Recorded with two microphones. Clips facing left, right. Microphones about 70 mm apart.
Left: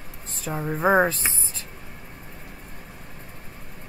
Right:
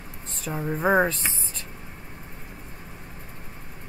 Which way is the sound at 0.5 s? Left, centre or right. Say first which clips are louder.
Left 2 dB; centre.